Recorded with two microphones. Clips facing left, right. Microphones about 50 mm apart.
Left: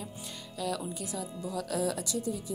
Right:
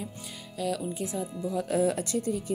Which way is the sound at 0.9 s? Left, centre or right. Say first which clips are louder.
Right 5 dB; right.